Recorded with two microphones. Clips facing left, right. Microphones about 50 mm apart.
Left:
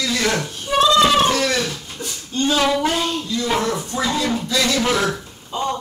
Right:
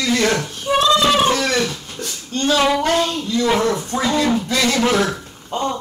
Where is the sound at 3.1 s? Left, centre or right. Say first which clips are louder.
Right 3 dB; right.